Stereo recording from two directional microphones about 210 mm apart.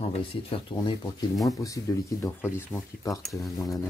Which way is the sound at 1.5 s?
15° left (ahead or behind).